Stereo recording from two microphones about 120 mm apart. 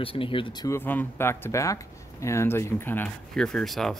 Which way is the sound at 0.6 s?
15° left (ahead or behind).